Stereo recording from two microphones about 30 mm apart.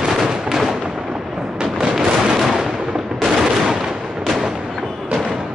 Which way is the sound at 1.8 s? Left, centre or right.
Right.